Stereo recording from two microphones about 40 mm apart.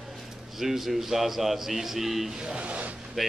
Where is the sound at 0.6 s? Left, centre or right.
Centre.